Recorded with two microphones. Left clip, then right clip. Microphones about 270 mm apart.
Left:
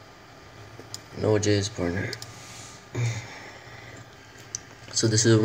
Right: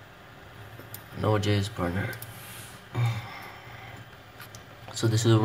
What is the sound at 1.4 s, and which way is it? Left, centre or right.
Speech, centre.